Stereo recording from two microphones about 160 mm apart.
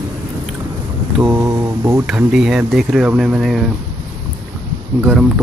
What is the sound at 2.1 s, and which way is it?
Speech, 5° right (ahead or behind).